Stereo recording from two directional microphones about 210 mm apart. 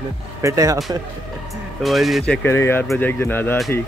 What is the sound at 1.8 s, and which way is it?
Speech, centre (ahead or behind).